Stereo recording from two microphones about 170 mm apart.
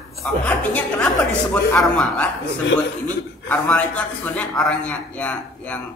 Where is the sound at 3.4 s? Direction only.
10° left (ahead or behind).